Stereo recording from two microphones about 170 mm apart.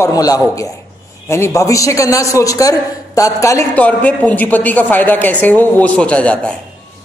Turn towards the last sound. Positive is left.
turn(degrees=5)  # may be behind; listen again after turning